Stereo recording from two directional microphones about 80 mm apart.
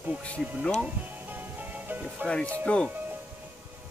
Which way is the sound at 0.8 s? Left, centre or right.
Right.